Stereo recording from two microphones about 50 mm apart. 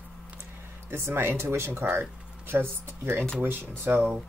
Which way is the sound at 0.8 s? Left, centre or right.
Right.